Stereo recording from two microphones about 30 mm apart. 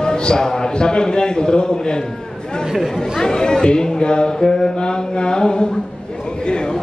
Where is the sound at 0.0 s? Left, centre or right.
Left.